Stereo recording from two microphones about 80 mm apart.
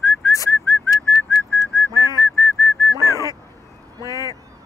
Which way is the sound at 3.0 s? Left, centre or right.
Right.